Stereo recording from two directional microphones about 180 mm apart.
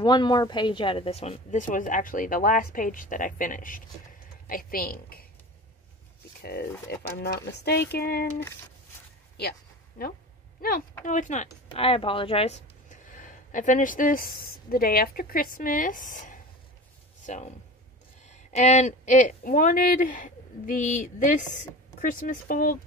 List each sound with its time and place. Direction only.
0.0 s a woman's voice: 25° left (ahead or behind); by 5.2 s 55° left (ahead or behind)
6.4 s speech: 60° left (ahead or behind)
9.4 s a sound: 60° left (ahead or behind)
11.1 s a woman's voice: 45° left (ahead or behind)
11.7 s speech: 30° left (ahead or behind); by 16.3 s 45° left (ahead or behind)
17.2 s a sound: 40° left (ahead or behind)
18.2 s a woman's voice: 40° left (ahead or behind)